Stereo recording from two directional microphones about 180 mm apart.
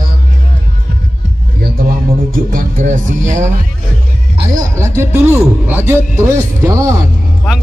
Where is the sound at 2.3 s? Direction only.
50° right (ahead or behind).